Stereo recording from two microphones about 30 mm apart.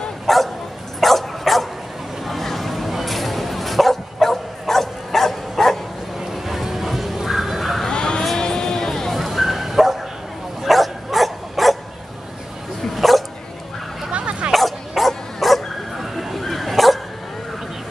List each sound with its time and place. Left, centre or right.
0.3 s bow-wow: centre
1.0 s dog: centre
2.2 s bow-wow: centre
6.1 s a sound: centre
7.9 s a sound: left
8.4 s music: left
9.1 s bow-wow: centre
10.6 s dog: centre
12.9 s dog: centre
14.1 s dog: right
14.5 s dog: centre